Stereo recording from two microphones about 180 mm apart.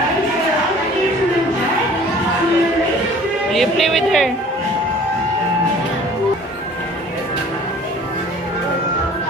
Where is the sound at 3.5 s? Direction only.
Centre (ahead or behind).